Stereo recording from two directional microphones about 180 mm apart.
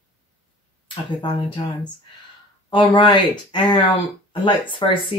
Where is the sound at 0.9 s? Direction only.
25° left (ahead or behind).